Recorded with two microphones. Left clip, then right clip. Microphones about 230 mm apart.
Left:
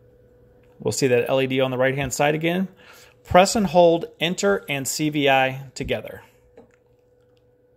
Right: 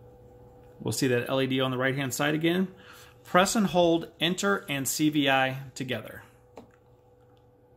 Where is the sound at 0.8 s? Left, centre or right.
Left.